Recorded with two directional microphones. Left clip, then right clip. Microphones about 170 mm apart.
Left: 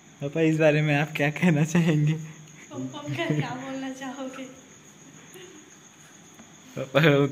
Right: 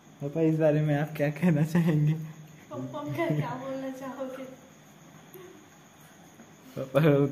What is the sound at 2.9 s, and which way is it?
Speech, 55° right (ahead or behind).